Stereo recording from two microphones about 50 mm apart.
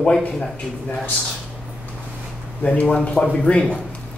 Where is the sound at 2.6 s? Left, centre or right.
Left.